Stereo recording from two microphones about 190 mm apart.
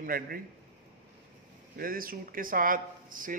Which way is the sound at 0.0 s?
50° right (ahead or behind).